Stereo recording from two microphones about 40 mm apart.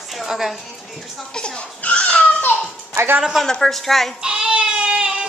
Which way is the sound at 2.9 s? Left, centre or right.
Right.